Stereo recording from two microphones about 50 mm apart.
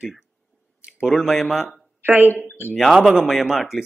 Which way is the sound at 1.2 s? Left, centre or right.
Centre.